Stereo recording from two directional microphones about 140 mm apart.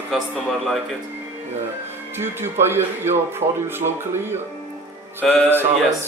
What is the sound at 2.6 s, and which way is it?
Speech, 15° right (ahead or behind).